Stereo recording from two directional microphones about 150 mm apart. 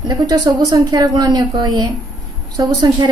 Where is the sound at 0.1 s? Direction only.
25° right (ahead or behind).